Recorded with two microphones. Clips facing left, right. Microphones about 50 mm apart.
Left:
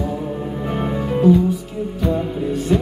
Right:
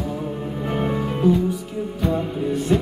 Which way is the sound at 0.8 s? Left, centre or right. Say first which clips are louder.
Left 3 dB; centre.